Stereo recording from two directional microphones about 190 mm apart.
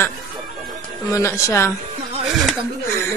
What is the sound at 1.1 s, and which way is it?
Speech, 15° left (ahead or behind).